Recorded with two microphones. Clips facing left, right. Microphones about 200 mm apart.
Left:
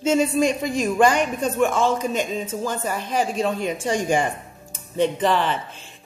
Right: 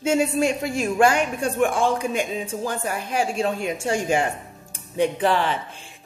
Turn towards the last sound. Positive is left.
turn(degrees=-10)  # may be behind; listen again after turning